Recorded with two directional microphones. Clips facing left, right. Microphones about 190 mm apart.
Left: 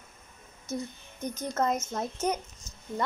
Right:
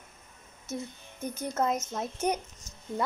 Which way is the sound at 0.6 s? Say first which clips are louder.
Left 2 dB; 5° right (ahead or behind).